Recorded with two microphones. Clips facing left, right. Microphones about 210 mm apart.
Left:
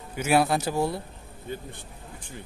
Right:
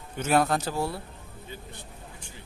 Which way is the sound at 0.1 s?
10° left (ahead or behind).